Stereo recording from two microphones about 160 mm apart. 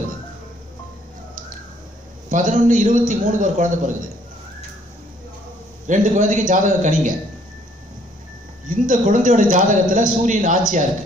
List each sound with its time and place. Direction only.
2.2 s a man's voice: 50° right (ahead or behind)
5.9 s a man's voice: 50° right (ahead or behind)
8.6 s a man's voice: 55° right (ahead or behind)